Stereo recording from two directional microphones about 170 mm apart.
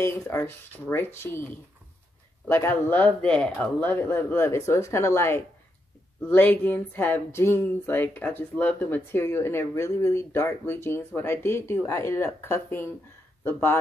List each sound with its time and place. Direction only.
0.0 s speech: 15° left (ahead or behind)